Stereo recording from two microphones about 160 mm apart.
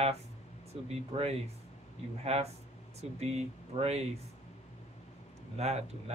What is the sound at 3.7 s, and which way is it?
Speech, 40° right (ahead or behind).